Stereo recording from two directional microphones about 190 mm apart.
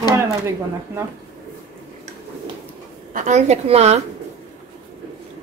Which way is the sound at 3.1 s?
40° right (ahead or behind).